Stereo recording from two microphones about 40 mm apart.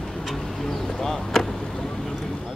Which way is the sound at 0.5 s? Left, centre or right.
Centre.